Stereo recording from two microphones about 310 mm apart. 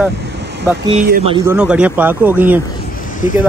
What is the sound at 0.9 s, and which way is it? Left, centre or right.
Speech, right.